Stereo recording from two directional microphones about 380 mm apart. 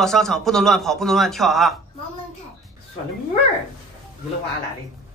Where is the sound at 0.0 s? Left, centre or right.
Centre.